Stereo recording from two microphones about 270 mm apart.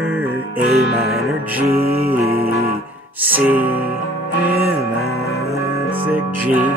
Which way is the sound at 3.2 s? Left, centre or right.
Centre.